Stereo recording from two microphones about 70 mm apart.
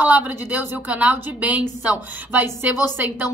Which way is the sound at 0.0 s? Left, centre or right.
Right.